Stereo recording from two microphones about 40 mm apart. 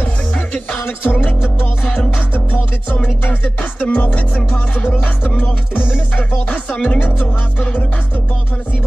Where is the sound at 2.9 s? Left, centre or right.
Left.